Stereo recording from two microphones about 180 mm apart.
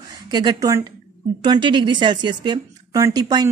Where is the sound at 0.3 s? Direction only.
25° right (ahead or behind).